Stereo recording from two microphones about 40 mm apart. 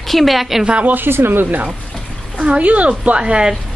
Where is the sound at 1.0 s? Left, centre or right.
Right.